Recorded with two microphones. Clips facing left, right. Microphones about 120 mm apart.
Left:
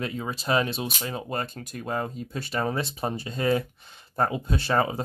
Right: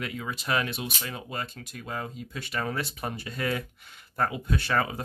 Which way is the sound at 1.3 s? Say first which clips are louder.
Left 5 dB; 45° left (ahead or behind).